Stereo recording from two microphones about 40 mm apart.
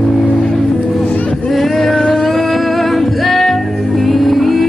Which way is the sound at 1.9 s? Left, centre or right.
Centre.